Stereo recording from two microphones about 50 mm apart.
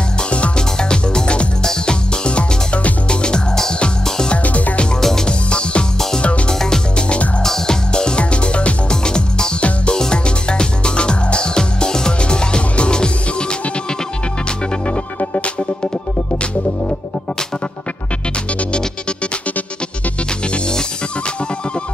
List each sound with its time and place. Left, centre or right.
0.3 s music: centre
5.0 s music: centre
6.6 s music: centre
15.1 s music: left